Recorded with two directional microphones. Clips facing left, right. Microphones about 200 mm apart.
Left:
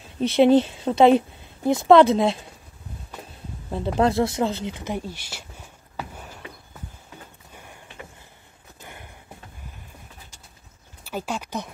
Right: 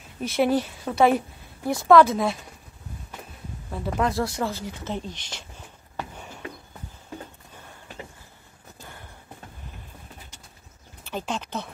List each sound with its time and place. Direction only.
0.2 s a woman's voice: 25° left (ahead or behind)
3.7 s a woman's voice: 25° left (ahead or behind); by 5.4 s 10° left (ahead or behind)
8.8 s a sound: 20° left (ahead or behind)
11.1 s speech: 10° left (ahead or behind)